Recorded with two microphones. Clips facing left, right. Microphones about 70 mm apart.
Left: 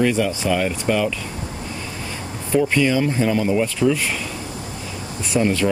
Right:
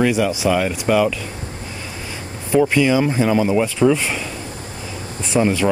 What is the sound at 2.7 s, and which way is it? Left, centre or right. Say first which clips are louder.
Speech: right 2 dB; centre.